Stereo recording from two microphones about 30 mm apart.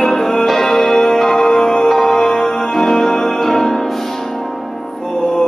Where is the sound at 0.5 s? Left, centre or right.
Centre.